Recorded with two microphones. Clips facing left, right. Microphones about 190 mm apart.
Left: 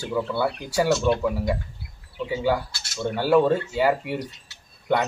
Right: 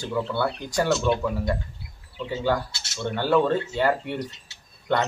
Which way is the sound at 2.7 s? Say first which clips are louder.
Even; 25° right (ahead or behind).